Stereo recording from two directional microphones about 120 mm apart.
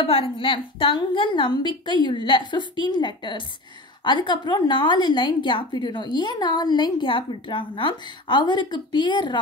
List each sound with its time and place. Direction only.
0.0 s a woman's voice: 55° left (ahead or behind)